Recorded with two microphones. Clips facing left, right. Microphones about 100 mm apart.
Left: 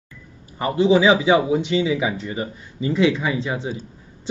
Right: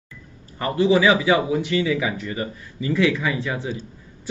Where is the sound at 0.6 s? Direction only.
20° left (ahead or behind).